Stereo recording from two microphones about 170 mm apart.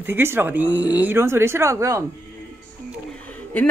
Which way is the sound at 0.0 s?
15° right (ahead or behind).